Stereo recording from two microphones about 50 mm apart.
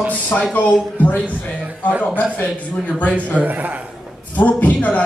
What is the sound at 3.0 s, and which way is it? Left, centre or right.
Speech, left.